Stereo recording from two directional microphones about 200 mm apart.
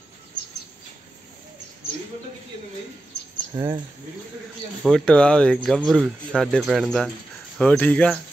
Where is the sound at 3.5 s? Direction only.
20° right (ahead or behind).